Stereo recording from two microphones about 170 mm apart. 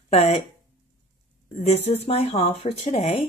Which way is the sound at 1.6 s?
40° left (ahead or behind).